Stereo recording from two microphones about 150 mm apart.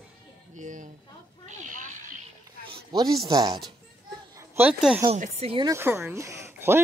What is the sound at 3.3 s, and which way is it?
Speech, 25° right (ahead or behind).